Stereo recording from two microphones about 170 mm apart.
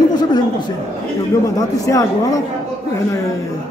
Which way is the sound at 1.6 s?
20° left (ahead or behind).